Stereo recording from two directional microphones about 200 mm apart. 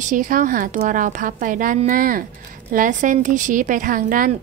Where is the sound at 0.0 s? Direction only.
40° right (ahead or behind).